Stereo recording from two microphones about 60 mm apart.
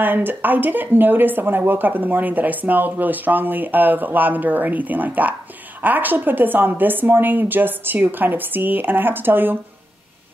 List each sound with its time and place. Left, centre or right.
0.0 s speech: right